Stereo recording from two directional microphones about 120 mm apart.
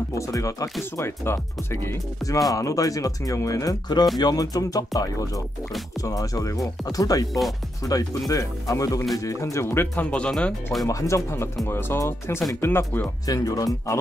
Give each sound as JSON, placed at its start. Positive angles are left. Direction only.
{"t": 0.1, "sound": "speech", "side_deg": 25}
{"t": 10.9, "sound": "speech", "side_deg": 25}
{"t": 13.3, "sound": "speech", "side_deg": 30}